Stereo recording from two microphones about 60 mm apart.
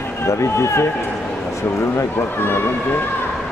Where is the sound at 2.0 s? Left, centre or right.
Left.